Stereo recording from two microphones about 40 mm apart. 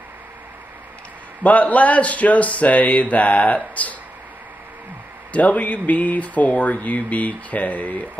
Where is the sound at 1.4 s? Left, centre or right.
Left.